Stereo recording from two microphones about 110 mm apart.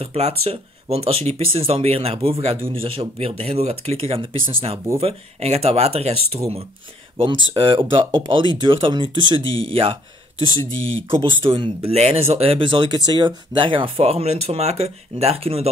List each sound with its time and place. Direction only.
0.0 s speech: 65° right (ahead or behind)
5.0 s speech: 70° right (ahead or behind)
7.2 s speech: 55° right (ahead or behind)
11.4 s speech: 50° right (ahead or behind)
11.9 s speech: 70° right (ahead or behind)